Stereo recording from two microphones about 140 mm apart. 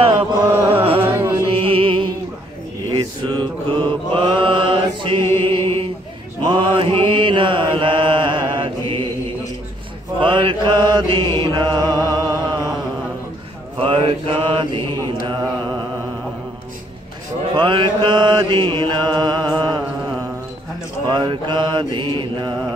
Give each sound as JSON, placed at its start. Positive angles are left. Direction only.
{"t": 0.0, "sound": "chant", "side_deg": -45}
{"t": 0.7, "sound": "music", "side_deg": -40}
{"t": 1.0, "sound": "music", "side_deg": -15}
{"t": 1.4, "sound": "music", "side_deg": -40}
{"t": 2.9, "sound": "mantra", "side_deg": -30}
{"t": 10.2, "sound": "mantra", "side_deg": -35}
{"t": 12.1, "sound": "music", "side_deg": -30}
{"t": 13.7, "sound": "mantra", "side_deg": -40}
{"t": 17.6, "sound": "mantra", "side_deg": -35}
{"t": 21.1, "sound": "mantra", "side_deg": -30}